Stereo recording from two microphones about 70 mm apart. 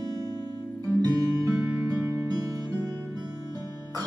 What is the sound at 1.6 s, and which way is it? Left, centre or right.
Music, centre.